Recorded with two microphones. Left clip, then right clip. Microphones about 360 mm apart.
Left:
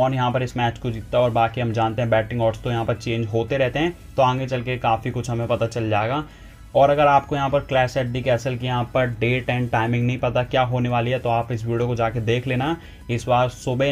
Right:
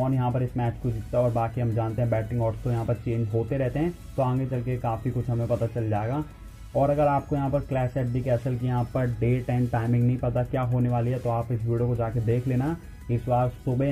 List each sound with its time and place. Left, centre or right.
0.0 s speech: left